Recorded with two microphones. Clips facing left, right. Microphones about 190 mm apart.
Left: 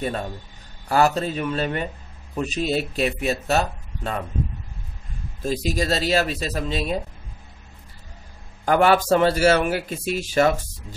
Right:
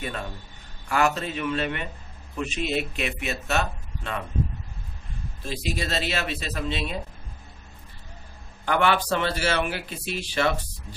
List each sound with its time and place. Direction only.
0.0 s speech: 35° left (ahead or behind)
5.4 s speech: 40° left (ahead or behind)
8.6 s a man's voice: 40° left (ahead or behind)